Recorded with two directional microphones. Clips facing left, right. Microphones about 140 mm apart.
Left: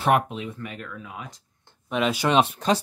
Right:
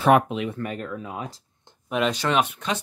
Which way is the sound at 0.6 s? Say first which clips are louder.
Right 6 dB; 40° right (ahead or behind).